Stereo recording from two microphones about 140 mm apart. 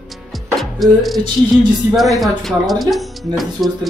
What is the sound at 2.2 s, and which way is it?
Speech, centre (ahead or behind).